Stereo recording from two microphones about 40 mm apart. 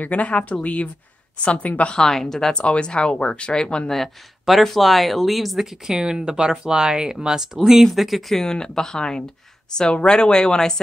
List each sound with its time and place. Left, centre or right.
0.0 s speech: left
1.9 s speech: centre
2.5 s speech: left
3.9 s speech: centre
5.9 s speech: centre
7.6 s speech: centre
8.4 s speech: centre